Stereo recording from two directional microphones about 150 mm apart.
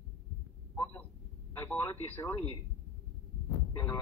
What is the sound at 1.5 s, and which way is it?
Radio, 15° left (ahead or behind).